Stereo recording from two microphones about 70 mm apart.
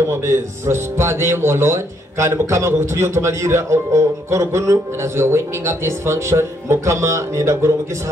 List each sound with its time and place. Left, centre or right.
0.0 s a man's voice: right